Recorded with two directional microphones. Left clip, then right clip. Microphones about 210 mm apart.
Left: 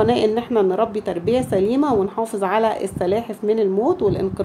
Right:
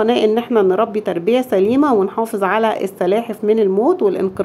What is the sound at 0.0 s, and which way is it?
A woman's voice, 15° right (ahead or behind).